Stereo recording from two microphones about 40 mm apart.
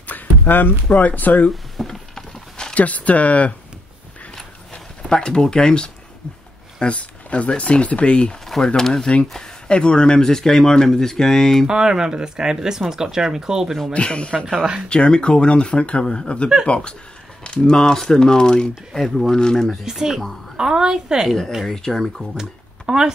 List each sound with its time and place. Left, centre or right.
0.0 s speech: left
1.5 s a sound: centre
2.7 s speech: left
4.7 s speech: left
6.8 s speech: left
8.6 s speech: centre
11.6 s speech: centre
13.9 s speech: left
18.9 s speech: centre
19.8 s speech: centre
21.6 s speech: centre
22.4 s speech: centre